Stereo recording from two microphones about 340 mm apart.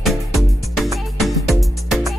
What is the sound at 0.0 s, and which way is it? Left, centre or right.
Music, centre.